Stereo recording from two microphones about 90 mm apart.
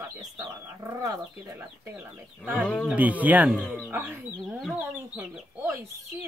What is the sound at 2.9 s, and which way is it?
Speech, 15° right (ahead or behind).